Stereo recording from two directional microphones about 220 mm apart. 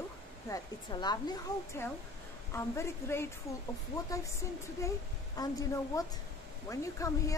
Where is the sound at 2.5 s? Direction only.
10° left (ahead or behind).